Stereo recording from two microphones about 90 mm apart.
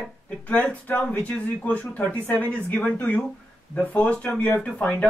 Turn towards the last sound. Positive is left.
turn(degrees=10)  # may be behind; listen again after turning